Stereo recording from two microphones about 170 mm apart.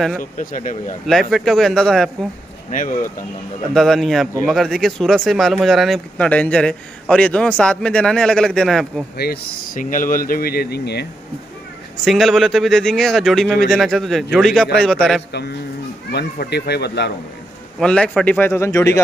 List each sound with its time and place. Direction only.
0.2 s speech: 50° left (ahead or behind)
1.0 s speech: centre (ahead or behind)
2.7 s speech: 50° left (ahead or behind)
3.7 s speech: centre (ahead or behind)
9.1 s speech: 65° left (ahead or behind)
12.0 s speech: centre (ahead or behind)
16.1 s speech: 80° left
17.7 s a man's voice: 5° left (ahead or behind)